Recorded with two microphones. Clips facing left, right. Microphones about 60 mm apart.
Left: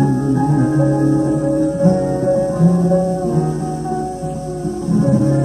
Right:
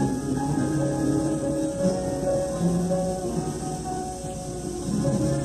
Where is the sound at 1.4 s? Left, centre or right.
Left.